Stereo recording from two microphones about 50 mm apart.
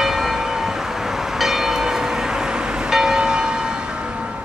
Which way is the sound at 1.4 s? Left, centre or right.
Centre.